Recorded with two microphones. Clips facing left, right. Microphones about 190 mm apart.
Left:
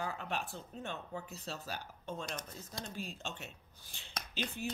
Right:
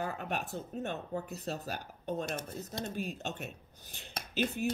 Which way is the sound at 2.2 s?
25° right (ahead or behind).